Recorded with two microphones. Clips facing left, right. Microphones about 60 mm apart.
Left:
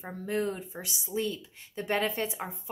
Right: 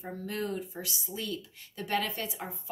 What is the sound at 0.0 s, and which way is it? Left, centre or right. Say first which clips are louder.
A woman's voice: left 4 dB; left.